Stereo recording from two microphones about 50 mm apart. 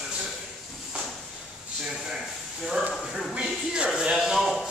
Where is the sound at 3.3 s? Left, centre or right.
Right.